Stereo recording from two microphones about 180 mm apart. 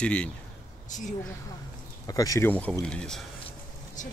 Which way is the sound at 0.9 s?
45° left (ahead or behind).